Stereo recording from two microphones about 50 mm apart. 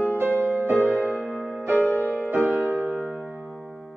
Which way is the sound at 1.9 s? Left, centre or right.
Right.